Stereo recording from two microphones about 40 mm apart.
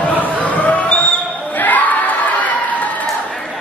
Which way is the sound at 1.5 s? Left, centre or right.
Left.